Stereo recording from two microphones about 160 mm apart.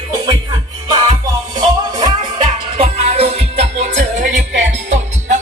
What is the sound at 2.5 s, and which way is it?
Music, 40° right (ahead or behind).